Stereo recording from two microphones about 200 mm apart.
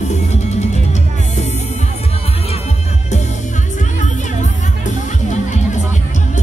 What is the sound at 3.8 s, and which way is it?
Music, 35° left (ahead or behind).